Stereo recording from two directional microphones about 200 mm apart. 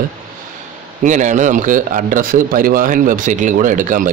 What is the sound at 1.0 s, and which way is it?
Speech, 40° right (ahead or behind).